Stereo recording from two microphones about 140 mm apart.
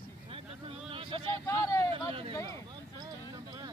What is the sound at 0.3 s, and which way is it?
Vehicle, 40° right (ahead or behind).